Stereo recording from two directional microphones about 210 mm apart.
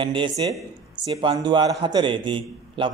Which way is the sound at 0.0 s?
25° right (ahead or behind).